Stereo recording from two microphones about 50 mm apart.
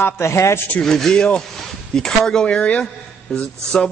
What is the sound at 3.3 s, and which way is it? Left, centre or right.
Speech, centre.